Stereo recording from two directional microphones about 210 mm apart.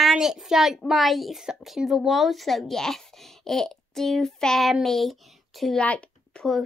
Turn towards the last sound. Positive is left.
turn(degrees=5)  # may be behind; listen again after turning